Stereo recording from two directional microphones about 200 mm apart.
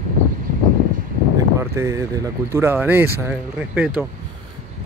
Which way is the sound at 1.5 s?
15° right (ahead or behind).